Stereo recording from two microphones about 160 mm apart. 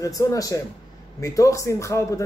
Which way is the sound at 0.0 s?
20° left (ahead or behind).